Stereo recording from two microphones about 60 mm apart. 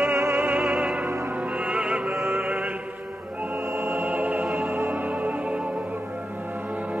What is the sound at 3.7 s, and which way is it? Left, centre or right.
Music, right.